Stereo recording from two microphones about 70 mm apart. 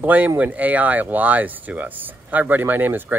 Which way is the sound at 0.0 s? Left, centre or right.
Right.